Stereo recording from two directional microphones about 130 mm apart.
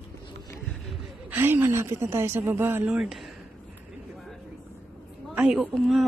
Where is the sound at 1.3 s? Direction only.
15° right (ahead or behind).